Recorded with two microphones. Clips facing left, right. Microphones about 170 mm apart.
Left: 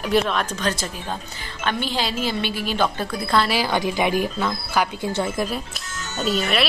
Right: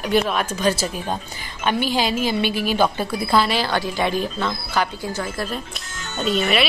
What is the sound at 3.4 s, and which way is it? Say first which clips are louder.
A woman's voice: even; 10° left (ahead or behind).